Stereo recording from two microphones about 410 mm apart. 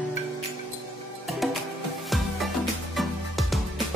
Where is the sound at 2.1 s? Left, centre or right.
Centre.